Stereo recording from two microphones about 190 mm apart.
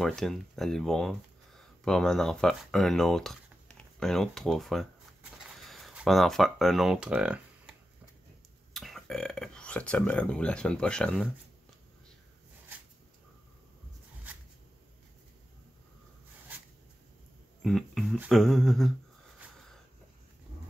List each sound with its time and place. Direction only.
0.0 s speech: centre (ahead or behind)
8.7 s speech: centre (ahead or behind)
17.6 s music: centre (ahead or behind)
18.1 s speech: 5° right (ahead or behind)